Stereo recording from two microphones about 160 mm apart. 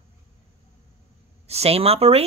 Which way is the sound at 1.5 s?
40° right (ahead or behind).